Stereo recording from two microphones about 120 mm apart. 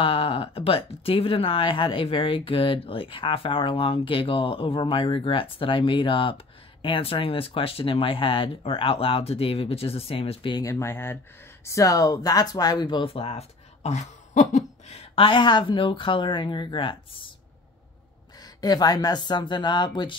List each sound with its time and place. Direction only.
0.0 s speech: 50° left (ahead or behind)
10.5 s speech: 25° left (ahead or behind); by 15.0 s 85° left
15.1 s speech: 40° left (ahead or behind)
18.6 s speech: 35° left (ahead or behind)